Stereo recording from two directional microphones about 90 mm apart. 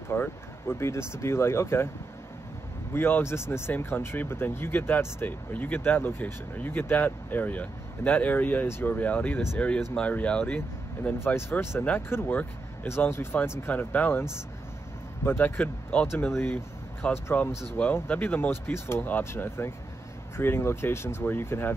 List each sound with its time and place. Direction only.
0.1 s speech: 25° left (ahead or behind)
2.9 s speech: 25° left (ahead or behind)
11.1 s speech: 30° left (ahead or behind)
15.2 s speech: 25° left (ahead or behind)
16.1 s speech: 30° left (ahead or behind)